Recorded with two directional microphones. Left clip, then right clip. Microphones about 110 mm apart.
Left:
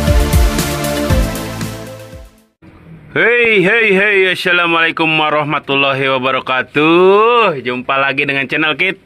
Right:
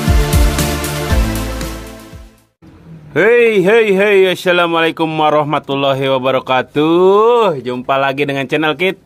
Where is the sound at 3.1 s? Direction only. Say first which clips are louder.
Right 1 dB; 20° right (ahead or behind).